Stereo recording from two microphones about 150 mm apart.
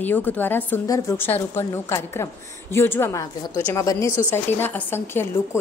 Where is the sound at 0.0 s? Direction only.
10° left (ahead or behind).